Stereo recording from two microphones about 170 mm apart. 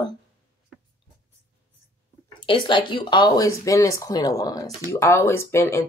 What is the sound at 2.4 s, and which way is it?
Speech, 30° left (ahead or behind).